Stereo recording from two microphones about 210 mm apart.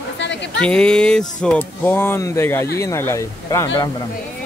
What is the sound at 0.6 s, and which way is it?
Speech, 5° left (ahead or behind).